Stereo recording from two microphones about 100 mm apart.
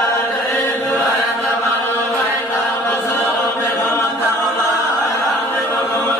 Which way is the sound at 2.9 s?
25° left (ahead or behind).